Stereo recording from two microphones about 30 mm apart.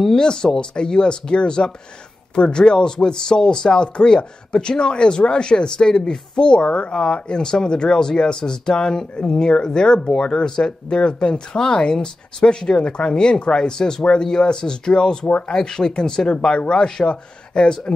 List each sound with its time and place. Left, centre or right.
0.1 s speech: left